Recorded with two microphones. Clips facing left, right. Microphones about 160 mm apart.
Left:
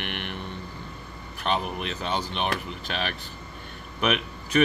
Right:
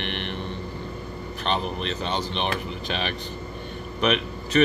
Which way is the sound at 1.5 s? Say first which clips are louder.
Right 1 dB; 5° left (ahead or behind).